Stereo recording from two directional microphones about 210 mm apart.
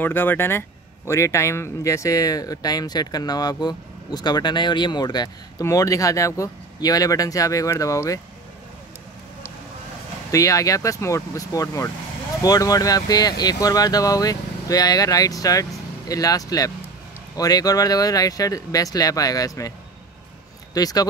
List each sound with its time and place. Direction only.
0.0 s speech: 10° left (ahead or behind)
10.3 s speech: 15° left (ahead or behind)
20.7 s speech: 15° left (ahead or behind)